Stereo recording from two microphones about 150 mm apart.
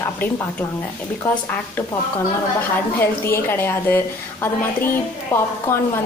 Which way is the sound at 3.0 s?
15° left (ahead or behind).